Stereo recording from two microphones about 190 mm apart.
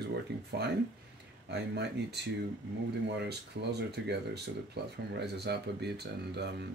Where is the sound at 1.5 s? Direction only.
60° right (ahead or behind).